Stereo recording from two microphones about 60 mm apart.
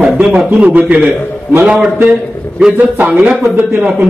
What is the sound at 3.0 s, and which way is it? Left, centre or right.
Speech, right.